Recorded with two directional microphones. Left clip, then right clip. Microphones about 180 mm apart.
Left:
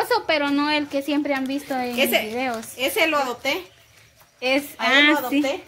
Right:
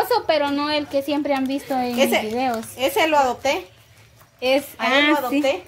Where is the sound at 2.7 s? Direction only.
40° right (ahead or behind).